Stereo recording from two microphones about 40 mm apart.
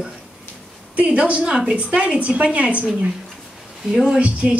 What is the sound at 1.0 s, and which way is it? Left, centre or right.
A woman's voice, right.